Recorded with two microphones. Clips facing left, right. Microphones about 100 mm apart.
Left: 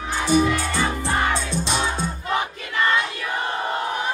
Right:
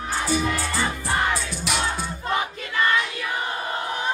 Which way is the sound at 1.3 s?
30° left (ahead or behind).